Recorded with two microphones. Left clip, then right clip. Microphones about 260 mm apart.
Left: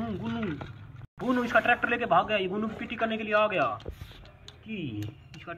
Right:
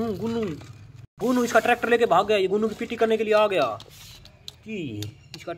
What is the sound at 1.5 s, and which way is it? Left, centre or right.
Speech, centre.